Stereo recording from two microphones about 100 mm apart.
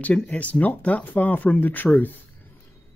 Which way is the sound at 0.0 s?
15° left (ahead or behind).